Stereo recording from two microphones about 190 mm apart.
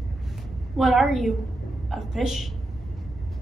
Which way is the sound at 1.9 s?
Centre (ahead or behind).